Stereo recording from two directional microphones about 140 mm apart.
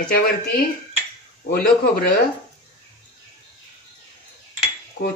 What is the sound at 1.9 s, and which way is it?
Speech, 90° left.